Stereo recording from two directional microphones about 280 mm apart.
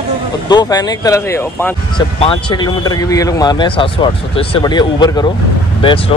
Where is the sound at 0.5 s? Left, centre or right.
Centre.